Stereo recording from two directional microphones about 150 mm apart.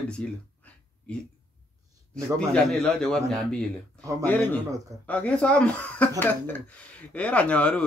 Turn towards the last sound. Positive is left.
turn(degrees=10)  # may be behind; listen again after turning